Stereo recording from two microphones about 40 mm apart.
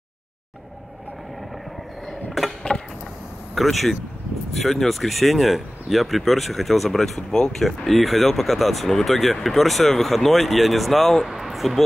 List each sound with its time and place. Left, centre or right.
2.4 s a sound: centre
3.5 s speech: centre
7.2 s speech: centre
7.5 s speech: centre